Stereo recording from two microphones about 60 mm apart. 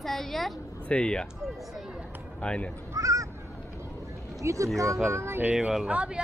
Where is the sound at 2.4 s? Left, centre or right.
Centre.